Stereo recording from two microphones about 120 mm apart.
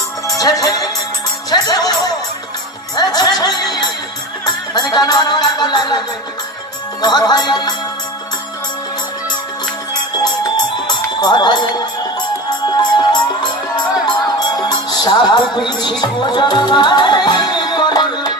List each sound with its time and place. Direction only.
0.4 s music: 30° left (ahead or behind)
7.0 s speech: 35° left (ahead or behind)
10.2 s music: 35° left (ahead or behind)